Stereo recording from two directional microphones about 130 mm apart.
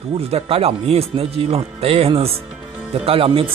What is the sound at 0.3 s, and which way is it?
Speech, 50° right (ahead or behind).